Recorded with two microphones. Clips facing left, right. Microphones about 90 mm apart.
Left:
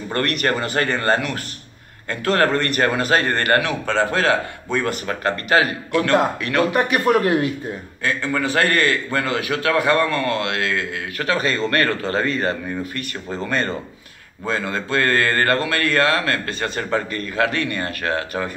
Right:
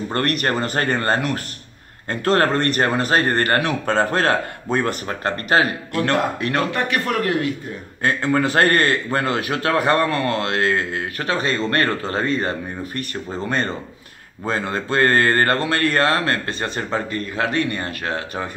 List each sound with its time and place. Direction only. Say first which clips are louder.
0.1 s a man's voice: left 1 dB; 35° right (ahead or behind)
5.5 s a man's voice: even; 40° right (ahead or behind)
6.7 s speech: left 5 dB; 20° left (ahead or behind)
8.0 s a man's voice: right 3 dB; 40° right (ahead or behind); by 18.5 s 20° right (ahead or behind)